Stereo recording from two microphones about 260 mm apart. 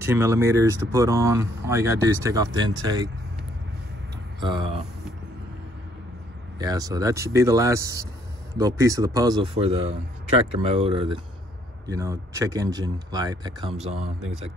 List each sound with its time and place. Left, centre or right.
0.0 s speech: centre
4.4 s speech: centre
6.6 s speech: centre